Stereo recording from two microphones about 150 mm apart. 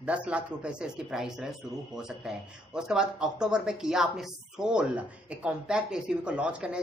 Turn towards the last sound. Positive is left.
turn(degrees=-5)  # may be behind; listen again after turning